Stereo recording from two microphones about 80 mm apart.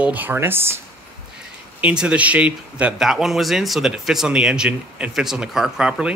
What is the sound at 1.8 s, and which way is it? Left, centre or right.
Speech, centre.